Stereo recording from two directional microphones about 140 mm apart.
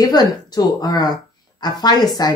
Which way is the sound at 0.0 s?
30° left (ahead or behind).